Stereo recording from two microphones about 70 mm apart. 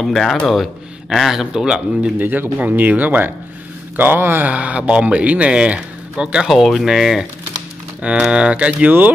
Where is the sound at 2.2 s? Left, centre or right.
Right; by 7.2 s centre.